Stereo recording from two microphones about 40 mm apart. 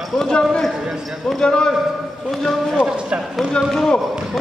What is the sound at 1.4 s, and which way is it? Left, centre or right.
Speech, left.